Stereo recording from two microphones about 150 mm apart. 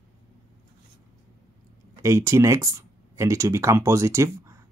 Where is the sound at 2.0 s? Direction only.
20° right (ahead or behind).